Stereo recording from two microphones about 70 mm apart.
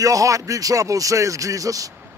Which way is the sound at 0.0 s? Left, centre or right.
Right.